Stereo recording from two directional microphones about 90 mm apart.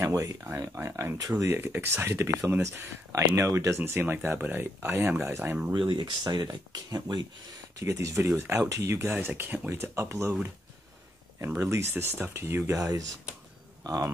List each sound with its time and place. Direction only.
0.0 s speech: 35° right (ahead or behind)
5.8 s speech: 60° right (ahead or behind)
7.8 s speech: 35° right (ahead or behind); by 9.7 s 20° right (ahead or behind)
9.7 s speech: 35° right (ahead or behind)
11.4 s speech: 30° right (ahead or behind)
12.7 s speech: 40° right (ahead or behind)